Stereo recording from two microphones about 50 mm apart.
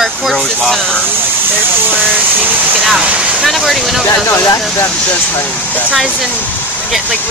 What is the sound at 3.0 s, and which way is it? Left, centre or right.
Speech, right.